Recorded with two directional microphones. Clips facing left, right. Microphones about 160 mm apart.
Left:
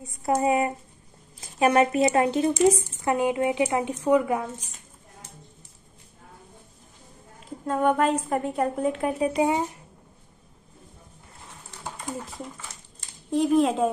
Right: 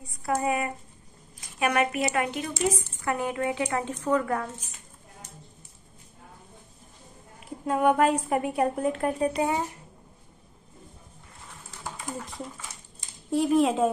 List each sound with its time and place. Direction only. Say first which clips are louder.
0.0 s speech: left 4 dB; 25° left (ahead or behind)
7.3 s a woman's voice: even; 5° right (ahead or behind)
8.7 s speech: left 1 dB; centre (ahead or behind)
11.8 s a sound: left 2 dB; centre (ahead or behind)
13.3 s speech: left 1 dB; centre (ahead or behind)